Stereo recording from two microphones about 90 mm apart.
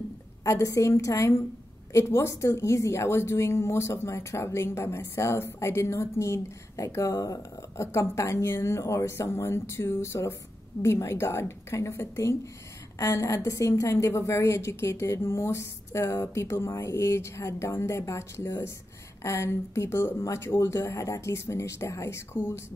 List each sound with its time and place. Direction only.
0.4 s a woman's voice: 35° left (ahead or behind)